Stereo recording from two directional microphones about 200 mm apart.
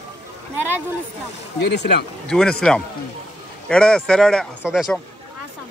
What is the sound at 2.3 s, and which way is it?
Speech, 5° left (ahead or behind).